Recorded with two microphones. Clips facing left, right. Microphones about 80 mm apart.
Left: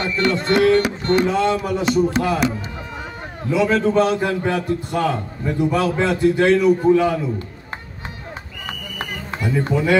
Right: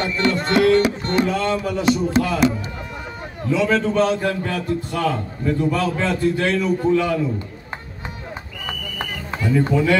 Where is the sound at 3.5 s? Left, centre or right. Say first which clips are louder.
Left 1 dB; centre.